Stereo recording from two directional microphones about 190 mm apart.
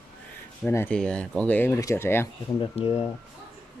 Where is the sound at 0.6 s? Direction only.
10° left (ahead or behind).